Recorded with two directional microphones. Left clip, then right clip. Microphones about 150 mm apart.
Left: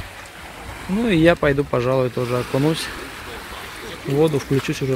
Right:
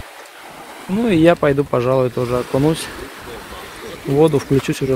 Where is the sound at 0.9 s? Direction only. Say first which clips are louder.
Right 3 dB; 10° right (ahead or behind).